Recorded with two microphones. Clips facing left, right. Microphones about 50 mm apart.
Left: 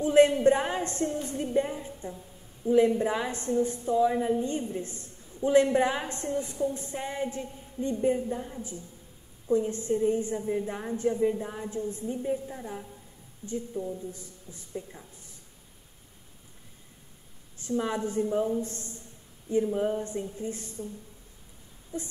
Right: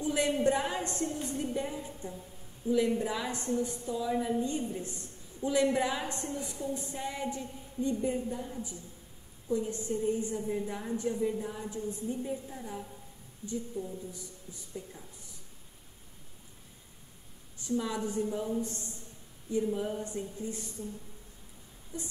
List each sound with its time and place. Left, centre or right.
0.0 s a woman's voice: left
12.2 s a woman's voice: left
13.4 s a woman's voice: left
17.6 s a woman's voice: left
19.5 s a woman's voice: left
21.9 s a woman's voice: left